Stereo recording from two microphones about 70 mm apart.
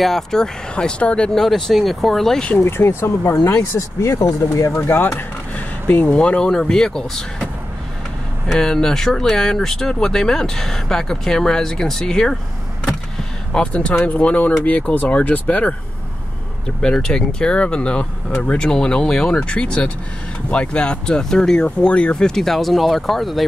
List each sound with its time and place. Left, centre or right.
0.0 s speech: centre
1.4 s speech: centre
2.5 s speech: left
4.8 s speech: left
6.0 s speech: centre
8.5 s speech: centre
13.5 s speech: centre
16.8 s speech: centre